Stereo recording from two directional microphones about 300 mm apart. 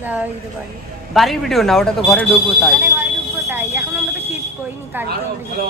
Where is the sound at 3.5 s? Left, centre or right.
Centre.